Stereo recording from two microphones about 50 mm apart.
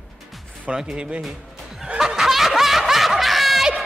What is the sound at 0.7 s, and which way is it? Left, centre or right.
Speech, centre.